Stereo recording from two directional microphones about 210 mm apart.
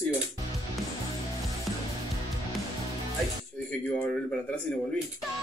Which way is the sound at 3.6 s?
5° left (ahead or behind).